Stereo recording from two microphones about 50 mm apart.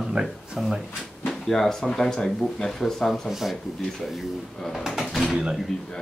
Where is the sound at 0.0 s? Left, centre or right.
Centre.